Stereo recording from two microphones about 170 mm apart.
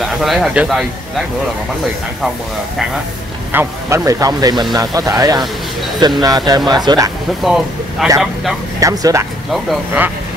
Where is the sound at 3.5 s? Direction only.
20° right (ahead or behind).